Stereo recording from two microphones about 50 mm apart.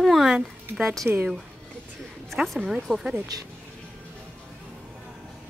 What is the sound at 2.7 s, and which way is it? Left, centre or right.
Speech, centre.